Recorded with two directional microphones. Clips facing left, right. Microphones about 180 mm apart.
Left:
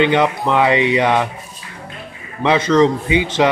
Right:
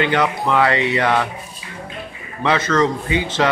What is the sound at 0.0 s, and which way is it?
Speech, 20° left (ahead or behind).